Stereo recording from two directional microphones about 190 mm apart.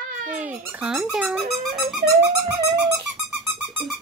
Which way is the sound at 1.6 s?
Centre (ahead or behind).